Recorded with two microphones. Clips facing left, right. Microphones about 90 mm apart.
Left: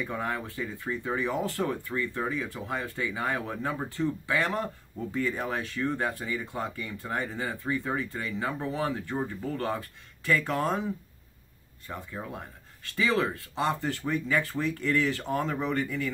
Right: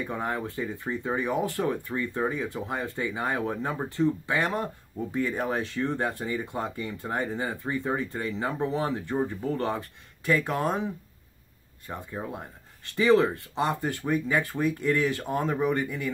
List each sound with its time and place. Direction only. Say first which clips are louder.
0.0 s speech: right 2 dB; 20° right (ahead or behind)
11.9 s speech: right 2 dB; 25° right (ahead or behind)